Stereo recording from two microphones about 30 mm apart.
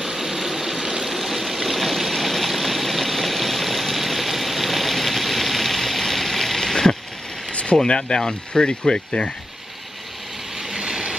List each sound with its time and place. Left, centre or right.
0.0 s vehicle: centre
1.0 s a sound: centre
7.5 s speech: left
10.6 s train: right